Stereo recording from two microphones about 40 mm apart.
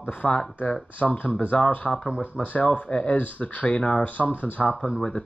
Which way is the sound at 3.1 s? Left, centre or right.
Left.